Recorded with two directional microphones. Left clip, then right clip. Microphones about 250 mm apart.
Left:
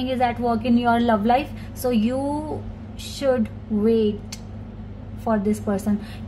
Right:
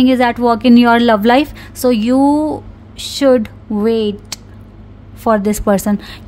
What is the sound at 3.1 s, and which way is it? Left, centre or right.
A woman's voice, right.